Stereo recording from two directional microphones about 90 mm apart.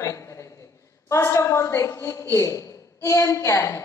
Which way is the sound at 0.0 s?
35° left (ahead or behind).